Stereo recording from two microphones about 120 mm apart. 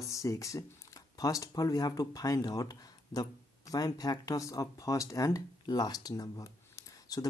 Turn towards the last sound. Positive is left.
turn(degrees=30)  # may be behind; listen again after turning